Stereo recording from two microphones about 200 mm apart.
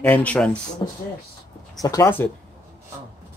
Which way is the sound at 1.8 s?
15° left (ahead or behind).